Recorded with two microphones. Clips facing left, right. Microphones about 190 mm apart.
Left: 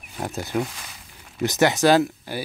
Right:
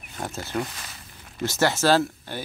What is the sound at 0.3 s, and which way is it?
Speech, 15° left (ahead or behind).